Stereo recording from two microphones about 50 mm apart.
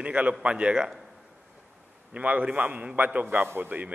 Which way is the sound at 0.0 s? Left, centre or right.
Right.